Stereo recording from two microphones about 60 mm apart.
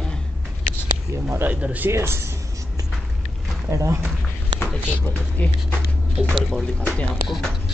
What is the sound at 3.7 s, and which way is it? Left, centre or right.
Speech, right.